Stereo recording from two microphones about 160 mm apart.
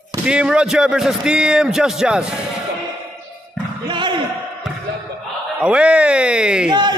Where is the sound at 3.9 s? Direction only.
30° right (ahead or behind).